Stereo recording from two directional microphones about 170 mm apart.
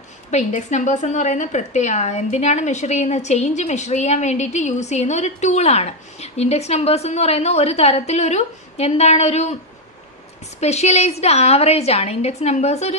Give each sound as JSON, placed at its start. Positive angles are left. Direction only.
{"t": 0.3, "sound": "a woman's voice", "side_deg": 45}
{"t": 10.6, "sound": "a woman's voice", "side_deg": 40}